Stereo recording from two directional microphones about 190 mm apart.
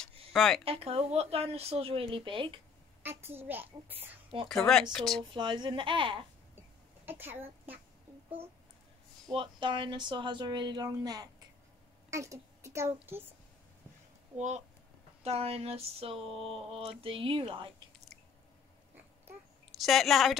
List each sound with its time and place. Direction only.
0.3 s speech: centre (ahead or behind)
0.7 s speech: 30° right (ahead or behind)
3.0 s a child's voice: 10° right (ahead or behind)
4.9 s a woman's voice: centre (ahead or behind)
5.3 s speech: 25° right (ahead or behind)
7.1 s speech: 10° right (ahead or behind)
9.3 s a woman's voice: 25° right (ahead or behind); by 13.3 s 10° right (ahead or behind)
15.2 s speech: 30° right (ahead or behind)
19.7 s a woman's voice: centre (ahead or behind)